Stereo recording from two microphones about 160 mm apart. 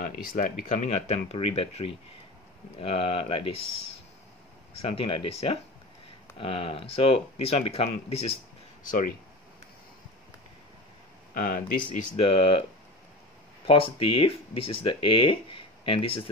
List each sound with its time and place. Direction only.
0.4 s speech: 45° left (ahead or behind)
4.8 s speech: 35° left (ahead or behind)
8.8 s speech: 55° left (ahead or behind)
11.3 s speech: 60° left (ahead or behind)
11.9 s speech: 40° left (ahead or behind)
13.7 s speech: 35° left (ahead or behind)